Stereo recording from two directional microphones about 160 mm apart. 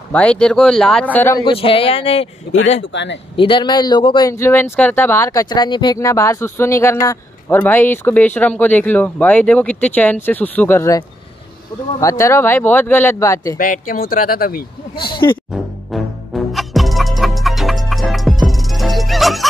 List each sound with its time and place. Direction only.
0.1 s speech: 5° left (ahead or behind)
1.4 s speech: 35° left (ahead or behind)
2.5 s speech: 90° left
3.3 s speech: 30° left (ahead or behind)
4.3 s speech: 15° left (ahead or behind)
13.6 s speech: 60° left (ahead or behind)
15.0 s speech: 30° left (ahead or behind)
15.5 s music: centre (ahead or behind)